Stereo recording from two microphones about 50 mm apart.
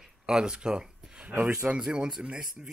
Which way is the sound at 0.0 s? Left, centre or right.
Centre.